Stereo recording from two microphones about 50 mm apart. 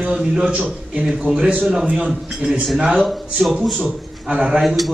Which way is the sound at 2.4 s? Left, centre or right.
Right.